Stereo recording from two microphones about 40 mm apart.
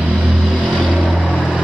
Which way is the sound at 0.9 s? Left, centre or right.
Centre.